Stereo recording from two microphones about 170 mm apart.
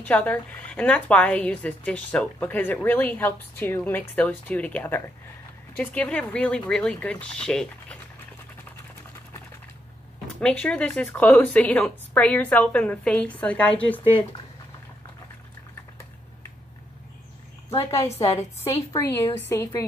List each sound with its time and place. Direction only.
0.0 s a woman's voice: 10° left (ahead or behind)
10.4 s a woman's voice: 5° left (ahead or behind)
17.9 s a woman's voice: 15° left (ahead or behind)